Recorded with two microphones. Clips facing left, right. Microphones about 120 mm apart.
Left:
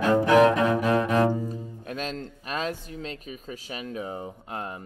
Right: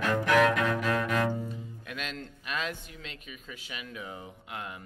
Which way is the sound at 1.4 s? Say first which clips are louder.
Left 6 dB; 35° left (ahead or behind).